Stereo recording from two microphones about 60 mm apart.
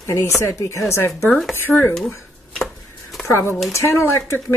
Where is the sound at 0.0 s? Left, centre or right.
Left.